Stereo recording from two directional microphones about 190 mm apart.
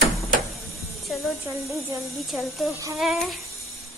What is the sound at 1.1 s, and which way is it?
Speech, centre (ahead or behind).